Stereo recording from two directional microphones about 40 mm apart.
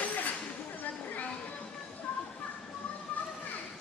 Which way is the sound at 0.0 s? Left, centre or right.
Left.